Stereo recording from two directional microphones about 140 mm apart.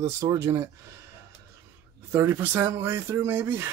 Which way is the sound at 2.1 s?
15° right (ahead or behind).